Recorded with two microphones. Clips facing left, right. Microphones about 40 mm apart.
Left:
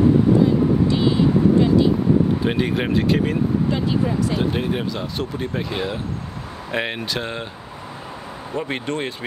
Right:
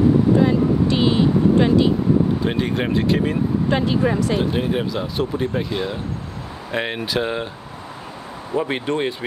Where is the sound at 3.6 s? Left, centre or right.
Right.